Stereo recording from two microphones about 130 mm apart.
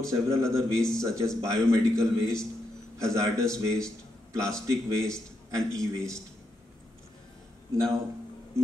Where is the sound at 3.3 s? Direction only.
5° left (ahead or behind).